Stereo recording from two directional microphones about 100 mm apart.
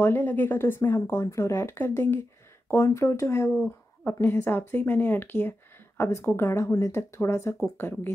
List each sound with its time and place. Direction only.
0.0 s a woman's voice: 20° left (ahead or behind)